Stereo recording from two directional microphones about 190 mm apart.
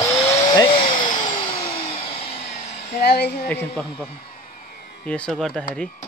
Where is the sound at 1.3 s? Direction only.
25° left (ahead or behind).